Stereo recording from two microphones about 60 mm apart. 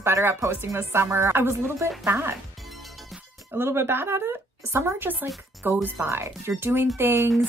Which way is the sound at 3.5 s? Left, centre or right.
Right.